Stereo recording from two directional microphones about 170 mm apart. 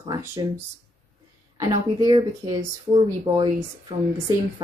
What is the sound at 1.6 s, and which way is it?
Speech, 25° right (ahead or behind).